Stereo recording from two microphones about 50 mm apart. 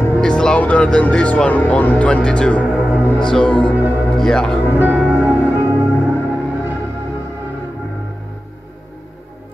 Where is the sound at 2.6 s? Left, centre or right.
Right.